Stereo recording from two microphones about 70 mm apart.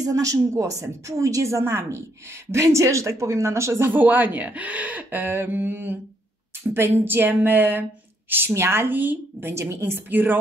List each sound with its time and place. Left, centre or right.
0.0 s a woman's voice: right
3.9 s a woman's voice: right
9.5 s a woman's voice: right